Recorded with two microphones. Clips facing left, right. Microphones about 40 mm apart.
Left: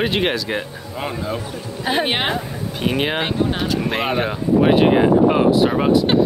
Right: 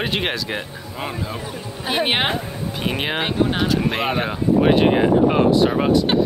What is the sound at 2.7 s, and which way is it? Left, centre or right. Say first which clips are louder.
Speech: left 3 dB; centre.